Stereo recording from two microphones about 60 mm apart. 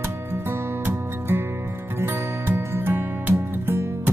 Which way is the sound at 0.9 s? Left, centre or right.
Right.